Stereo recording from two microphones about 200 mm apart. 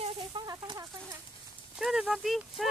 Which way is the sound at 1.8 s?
Centre (ahead or behind).